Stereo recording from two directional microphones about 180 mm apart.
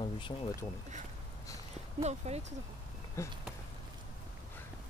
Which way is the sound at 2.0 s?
35° right (ahead or behind).